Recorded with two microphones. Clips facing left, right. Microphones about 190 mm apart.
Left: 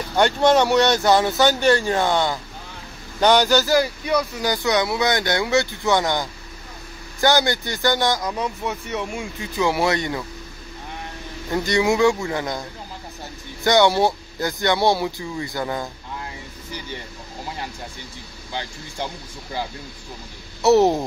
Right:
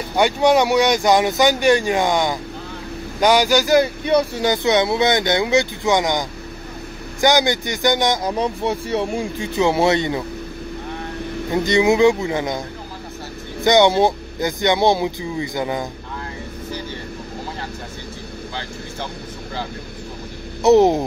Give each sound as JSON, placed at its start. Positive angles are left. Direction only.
{"t": 0.1, "sound": "speech", "side_deg": -10}
{"t": 11.5, "sound": "speech", "side_deg": -20}
{"t": 13.7, "sound": "speech", "side_deg": -20}
{"t": 18.5, "sound": "speech", "side_deg": 15}
{"t": 20.6, "sound": "speech", "side_deg": -15}